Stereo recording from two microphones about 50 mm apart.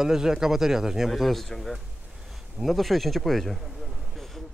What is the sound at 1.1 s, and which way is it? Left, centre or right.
Speech, centre.